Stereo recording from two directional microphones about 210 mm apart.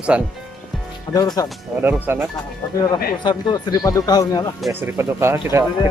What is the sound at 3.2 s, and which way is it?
Speech, 20° left (ahead or behind).